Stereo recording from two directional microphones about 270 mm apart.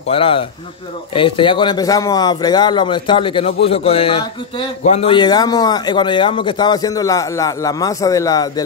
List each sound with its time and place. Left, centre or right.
0.0 s speech: left